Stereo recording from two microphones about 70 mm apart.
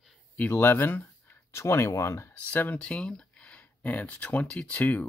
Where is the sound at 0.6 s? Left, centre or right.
Left.